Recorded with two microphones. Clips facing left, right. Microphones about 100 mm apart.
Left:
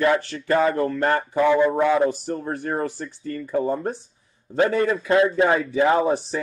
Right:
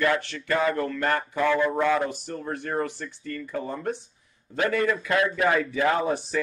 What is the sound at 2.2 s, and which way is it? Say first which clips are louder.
A man's voice: left 5 dB; 35° left (ahead or behind).